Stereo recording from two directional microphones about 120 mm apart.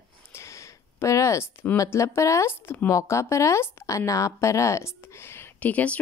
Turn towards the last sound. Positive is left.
turn(degrees=10)  # may be behind; listen again after turning